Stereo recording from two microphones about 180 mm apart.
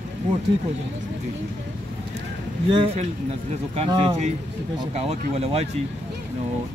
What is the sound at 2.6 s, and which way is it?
Speech, 30° right (ahead or behind).